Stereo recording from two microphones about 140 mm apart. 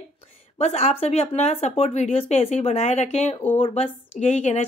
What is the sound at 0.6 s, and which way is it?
A woman's voice, 50° left (ahead or behind).